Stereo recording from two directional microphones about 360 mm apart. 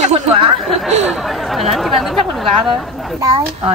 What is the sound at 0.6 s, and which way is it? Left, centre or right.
Speech, centre.